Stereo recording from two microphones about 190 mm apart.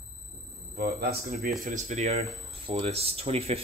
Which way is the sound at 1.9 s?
35° right (ahead or behind).